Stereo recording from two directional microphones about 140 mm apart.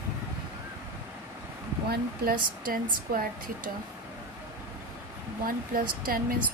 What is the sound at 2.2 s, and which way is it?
Speech, 90° right.